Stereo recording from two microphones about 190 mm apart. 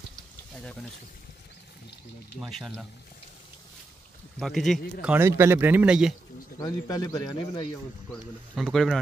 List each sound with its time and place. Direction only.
0.1 s boiling: 5° left (ahead or behind)
2.3 s speech: centre (ahead or behind)
4.4 s speech: centre (ahead or behind)
5.0 s a man's voice: 10° right (ahead or behind)
6.6 s speech: 20° left (ahead or behind)
8.1 s speech: centre (ahead or behind)